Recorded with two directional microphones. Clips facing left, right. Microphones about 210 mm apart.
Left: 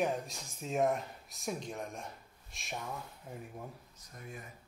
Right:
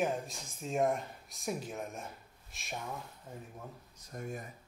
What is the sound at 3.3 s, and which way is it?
Speech, 10° left (ahead or behind).